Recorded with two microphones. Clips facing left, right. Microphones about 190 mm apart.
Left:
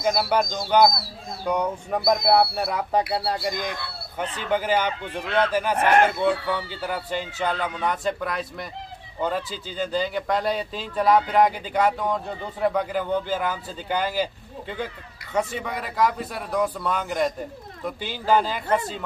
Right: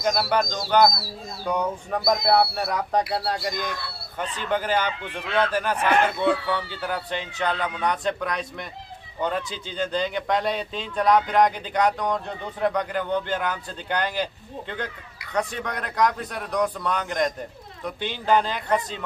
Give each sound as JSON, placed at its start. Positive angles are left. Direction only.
{"t": 0.0, "sound": "speech", "side_deg": 5}
{"t": 3.5, "sound": "speech", "side_deg": 55}
{"t": 4.5, "sound": "speech", "side_deg": 10}